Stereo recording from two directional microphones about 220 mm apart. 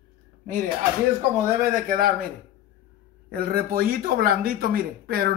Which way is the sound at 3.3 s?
45° right (ahead or behind).